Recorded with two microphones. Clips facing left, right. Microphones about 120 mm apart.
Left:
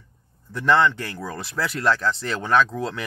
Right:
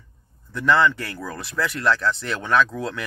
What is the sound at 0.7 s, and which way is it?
Speech, 25° left (ahead or behind).